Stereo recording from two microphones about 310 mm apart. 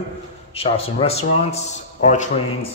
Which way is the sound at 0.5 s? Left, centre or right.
Centre.